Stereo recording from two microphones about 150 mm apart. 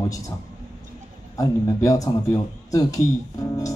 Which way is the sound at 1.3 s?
20° left (ahead or behind).